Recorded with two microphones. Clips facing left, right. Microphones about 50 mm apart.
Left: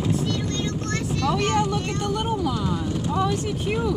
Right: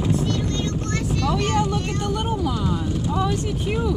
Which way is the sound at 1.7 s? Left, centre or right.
Centre.